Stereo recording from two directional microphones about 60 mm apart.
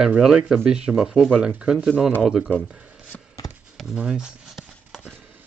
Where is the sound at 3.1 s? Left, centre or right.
Left.